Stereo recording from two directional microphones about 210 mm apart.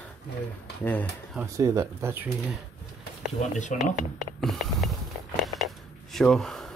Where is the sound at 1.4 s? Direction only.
15° right (ahead or behind).